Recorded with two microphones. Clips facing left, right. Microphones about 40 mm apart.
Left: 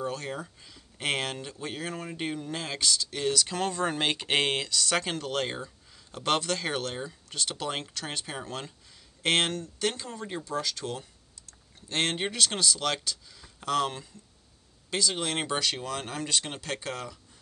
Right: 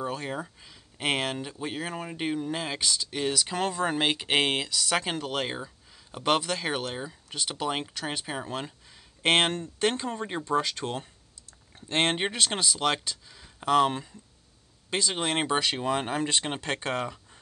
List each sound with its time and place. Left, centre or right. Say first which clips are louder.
0.0 s speech: right 1 dB; centre; by 17.2 s right